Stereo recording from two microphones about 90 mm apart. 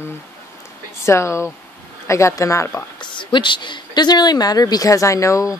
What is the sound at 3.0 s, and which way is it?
Speech, 60° left (ahead or behind).